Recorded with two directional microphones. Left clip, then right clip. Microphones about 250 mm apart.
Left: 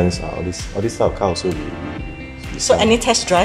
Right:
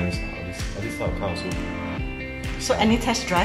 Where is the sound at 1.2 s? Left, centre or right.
Left.